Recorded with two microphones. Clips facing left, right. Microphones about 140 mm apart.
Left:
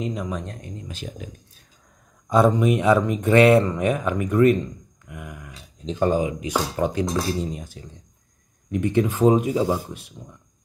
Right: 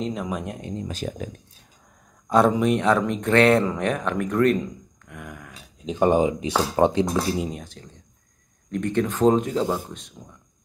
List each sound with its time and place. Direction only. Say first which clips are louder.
0.0 s speech: even; centre (ahead or behind)
0.5 s speech: right 6 dB; 25° right (ahead or behind)
0.8 s speech: right 5 dB; 45° right (ahead or behind)
2.2 s speech: left 1 dB; centre (ahead or behind)
5.9 s speech: right 3 dB; 20° right (ahead or behind)
7.5 s speech: left 1 dB; 5° left (ahead or behind)